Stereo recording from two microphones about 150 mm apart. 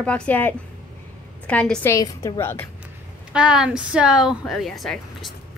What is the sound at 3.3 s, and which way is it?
Speech, 5° right (ahead or behind).